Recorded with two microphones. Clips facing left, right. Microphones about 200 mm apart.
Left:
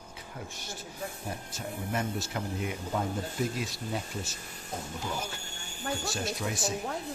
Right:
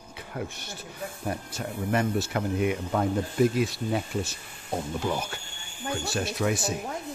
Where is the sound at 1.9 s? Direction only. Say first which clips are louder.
Right 8 dB; 65° right (ahead or behind).